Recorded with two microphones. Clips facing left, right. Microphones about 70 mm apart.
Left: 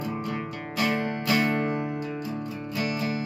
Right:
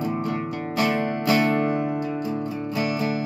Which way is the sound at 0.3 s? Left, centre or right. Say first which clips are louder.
Right 5 dB; centre.